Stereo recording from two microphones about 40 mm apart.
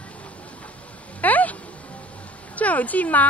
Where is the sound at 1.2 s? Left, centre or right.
Left.